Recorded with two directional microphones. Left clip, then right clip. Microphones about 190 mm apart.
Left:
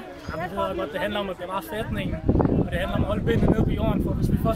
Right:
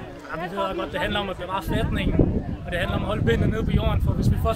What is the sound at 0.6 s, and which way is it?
Speech, centre (ahead or behind).